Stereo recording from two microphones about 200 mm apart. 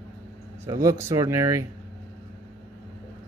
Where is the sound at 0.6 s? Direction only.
15° right (ahead or behind).